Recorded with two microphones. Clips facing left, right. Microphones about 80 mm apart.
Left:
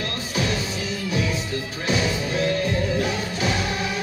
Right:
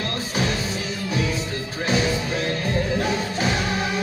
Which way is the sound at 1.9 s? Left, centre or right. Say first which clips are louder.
Right 1 dB; right.